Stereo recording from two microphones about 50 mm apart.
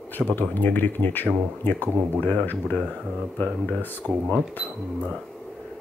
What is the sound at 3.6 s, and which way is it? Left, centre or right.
Speech, left.